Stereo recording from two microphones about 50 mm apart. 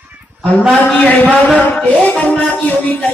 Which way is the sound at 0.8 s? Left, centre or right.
Left.